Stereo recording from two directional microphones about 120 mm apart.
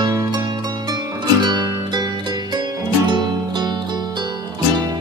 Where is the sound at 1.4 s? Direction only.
35° right (ahead or behind).